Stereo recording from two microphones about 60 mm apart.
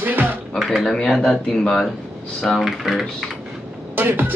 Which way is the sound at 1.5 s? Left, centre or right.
Centre.